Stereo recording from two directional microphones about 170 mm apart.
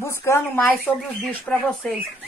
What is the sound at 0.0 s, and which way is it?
Speech, 15° left (ahead or behind).